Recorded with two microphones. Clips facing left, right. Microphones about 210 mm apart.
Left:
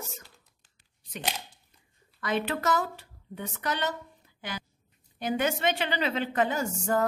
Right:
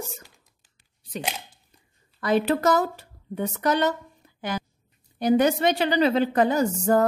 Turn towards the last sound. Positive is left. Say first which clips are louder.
# right 7 dB
turn(degrees=-35)  # may be behind; listen again after turning